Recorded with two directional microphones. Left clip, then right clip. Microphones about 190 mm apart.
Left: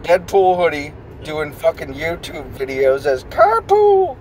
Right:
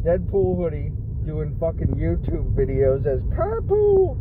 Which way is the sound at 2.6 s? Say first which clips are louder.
Left 6 dB; 10° left (ahead or behind).